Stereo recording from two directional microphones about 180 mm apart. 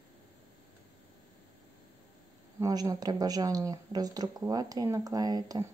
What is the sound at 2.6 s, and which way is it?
Speech, 20° right (ahead or behind).